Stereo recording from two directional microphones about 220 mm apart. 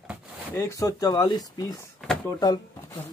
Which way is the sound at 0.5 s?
15° left (ahead or behind).